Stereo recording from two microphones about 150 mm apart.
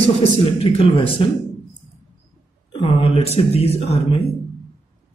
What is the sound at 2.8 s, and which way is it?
Speech, 35° left (ahead or behind).